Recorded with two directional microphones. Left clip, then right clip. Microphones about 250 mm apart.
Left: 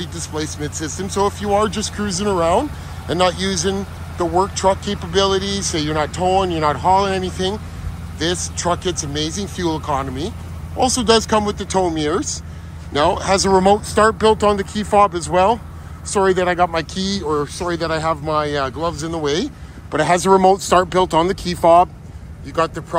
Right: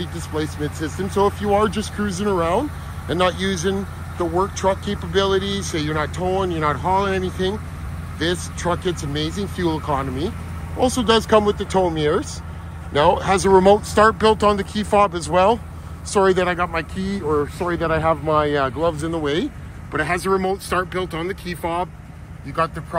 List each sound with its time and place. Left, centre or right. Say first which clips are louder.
0.0 s speech: even; centre
20.0 s speech: left 7 dB; centre
22.6 s speech: left 3 dB; centre